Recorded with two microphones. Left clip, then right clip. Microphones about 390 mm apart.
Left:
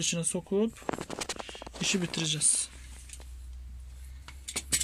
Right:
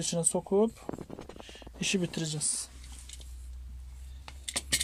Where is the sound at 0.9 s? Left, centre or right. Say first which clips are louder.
Left 7 dB; left.